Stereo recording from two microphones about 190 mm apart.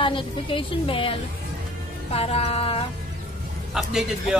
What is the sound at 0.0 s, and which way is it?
A woman's voice, 25° left (ahead or behind).